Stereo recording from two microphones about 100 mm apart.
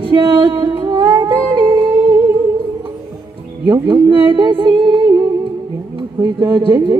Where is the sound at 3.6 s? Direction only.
50° right (ahead or behind).